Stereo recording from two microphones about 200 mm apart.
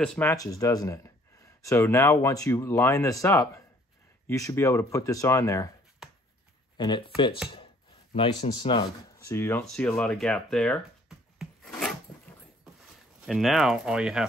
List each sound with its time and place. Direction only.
0.0 s speech: 10° left (ahead or behind)
6.0 s a sound: centre (ahead or behind)
6.8 s speech: 25° left (ahead or behind)
9.2 s speech: 10° left (ahead or behind)
13.2 s speech: centre (ahead or behind)